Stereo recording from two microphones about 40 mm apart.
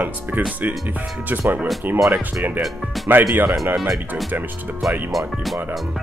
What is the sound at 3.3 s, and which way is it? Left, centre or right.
Speech, right.